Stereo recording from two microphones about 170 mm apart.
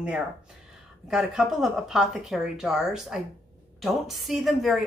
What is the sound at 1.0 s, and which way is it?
A woman's voice, 5° right (ahead or behind).